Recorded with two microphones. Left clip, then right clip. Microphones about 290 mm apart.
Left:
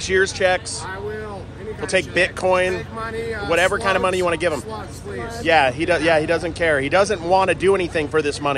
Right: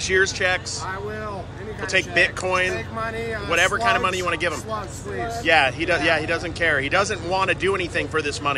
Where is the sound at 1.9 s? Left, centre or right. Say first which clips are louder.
Even; centre.